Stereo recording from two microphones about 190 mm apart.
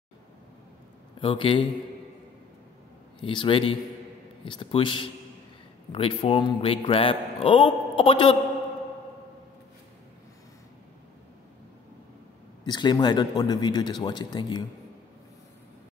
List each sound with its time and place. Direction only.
1.2 s a man's voice: 25° left (ahead or behind)
3.2 s a man's voice: 25° left (ahead or behind)
12.6 s a man's voice: 20° left (ahead or behind)